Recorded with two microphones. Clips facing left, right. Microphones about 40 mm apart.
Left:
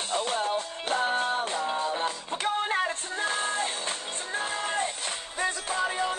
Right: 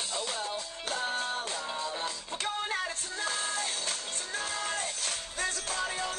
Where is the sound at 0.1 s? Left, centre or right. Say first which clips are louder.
Left 10 dB; left.